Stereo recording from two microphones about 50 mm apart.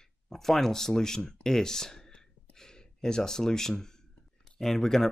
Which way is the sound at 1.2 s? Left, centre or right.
Centre.